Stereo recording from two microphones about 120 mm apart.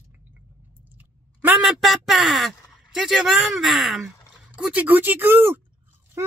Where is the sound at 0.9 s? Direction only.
15° right (ahead or behind).